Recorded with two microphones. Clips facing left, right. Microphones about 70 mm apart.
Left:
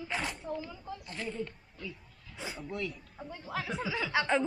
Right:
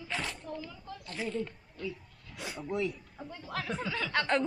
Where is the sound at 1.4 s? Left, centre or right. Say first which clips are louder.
Right 2 dB; centre.